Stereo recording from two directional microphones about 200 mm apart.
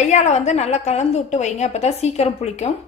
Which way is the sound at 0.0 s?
35° left (ahead or behind).